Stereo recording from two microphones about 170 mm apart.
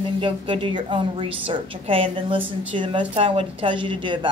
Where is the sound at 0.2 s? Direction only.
30° right (ahead or behind).